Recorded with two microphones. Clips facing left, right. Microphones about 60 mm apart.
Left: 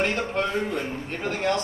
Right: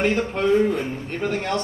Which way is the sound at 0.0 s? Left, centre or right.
Centre.